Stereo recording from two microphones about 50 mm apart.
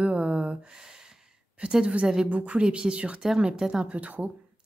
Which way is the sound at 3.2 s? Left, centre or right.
Centre.